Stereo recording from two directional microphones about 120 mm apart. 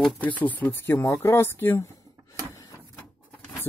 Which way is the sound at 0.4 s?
15° left (ahead or behind).